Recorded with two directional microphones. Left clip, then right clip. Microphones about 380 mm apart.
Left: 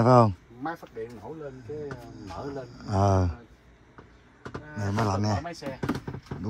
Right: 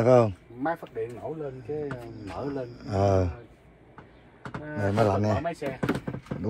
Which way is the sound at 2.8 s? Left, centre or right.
Centre.